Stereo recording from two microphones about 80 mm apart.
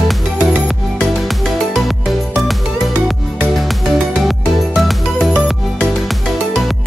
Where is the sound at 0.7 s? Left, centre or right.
Centre.